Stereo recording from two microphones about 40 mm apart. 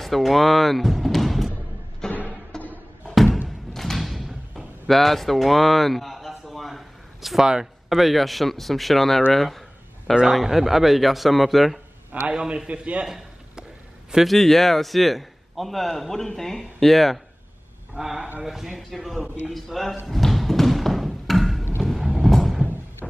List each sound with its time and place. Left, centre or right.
0.0 s speech: centre
2.0 s music: centre
2.5 s a sound: centre
3.4 s door: centre
7.9 s a man's voice: centre
10.4 s a man's voice: centre
12.3 s a man's voice: right
13.0 s a sound: centre
14.2 s a man's voice: centre
17.9 s a man's voice: centre
20.1 s music: centre
21.8 s vehicle: centre